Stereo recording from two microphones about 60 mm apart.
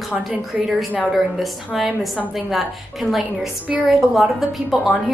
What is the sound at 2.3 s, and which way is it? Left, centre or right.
A woman's voice, centre.